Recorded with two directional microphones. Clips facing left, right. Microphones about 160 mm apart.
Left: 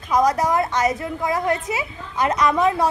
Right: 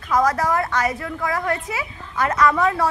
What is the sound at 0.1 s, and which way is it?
A woman's voice, 15° left (ahead or behind).